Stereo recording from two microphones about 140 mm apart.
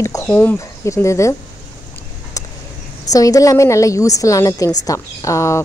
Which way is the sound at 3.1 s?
25° left (ahead or behind).